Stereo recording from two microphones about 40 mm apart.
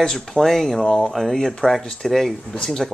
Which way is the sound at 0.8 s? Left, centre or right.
Left.